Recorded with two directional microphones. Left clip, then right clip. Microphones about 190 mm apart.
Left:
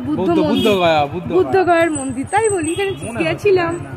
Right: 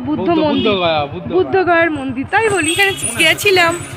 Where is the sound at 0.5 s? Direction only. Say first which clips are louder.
Left 1 dB; 55° left (ahead or behind).